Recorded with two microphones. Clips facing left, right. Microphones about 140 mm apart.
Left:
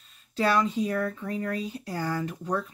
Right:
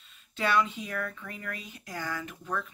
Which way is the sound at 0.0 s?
40° left (ahead or behind).